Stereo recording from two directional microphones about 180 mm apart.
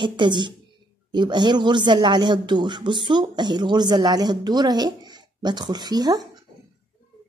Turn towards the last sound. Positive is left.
turn(degrees=-20)  # may be behind; listen again after turning